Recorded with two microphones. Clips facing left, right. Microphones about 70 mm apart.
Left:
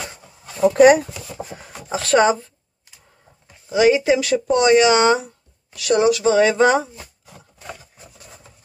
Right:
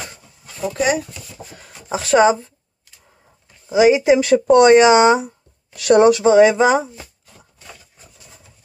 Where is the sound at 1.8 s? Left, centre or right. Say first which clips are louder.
Right 2 dB; centre.